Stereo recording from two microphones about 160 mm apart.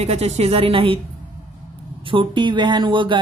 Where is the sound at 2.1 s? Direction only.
30° right (ahead or behind).